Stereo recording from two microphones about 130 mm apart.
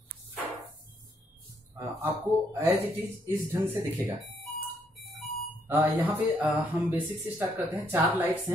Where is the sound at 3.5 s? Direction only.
15° right (ahead or behind).